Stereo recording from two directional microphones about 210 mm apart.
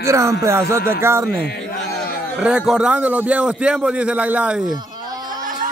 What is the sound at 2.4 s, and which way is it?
A man's voice, 5° right (ahead or behind).